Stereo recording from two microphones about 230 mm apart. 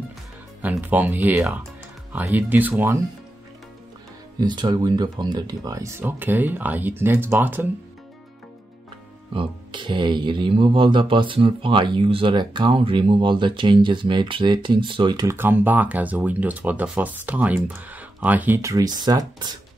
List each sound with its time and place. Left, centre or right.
0.6 s speech: centre
4.4 s speech: centre
9.3 s speech: right